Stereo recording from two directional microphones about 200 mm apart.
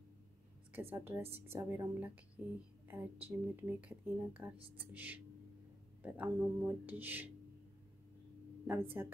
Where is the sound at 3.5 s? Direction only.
10° right (ahead or behind).